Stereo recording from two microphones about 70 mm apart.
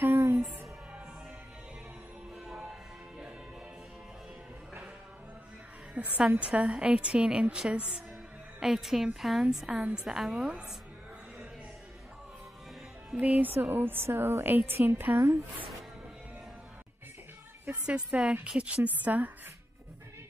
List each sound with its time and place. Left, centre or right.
0.0 s music: right
0.5 s music: centre
2.3 s music: centre
5.9 s a woman's voice: centre
9.8 s a woman's voice: right
10.0 s a woman's voice: centre
13.1 s a woman's voice: centre
17.8 s a woman's voice: centre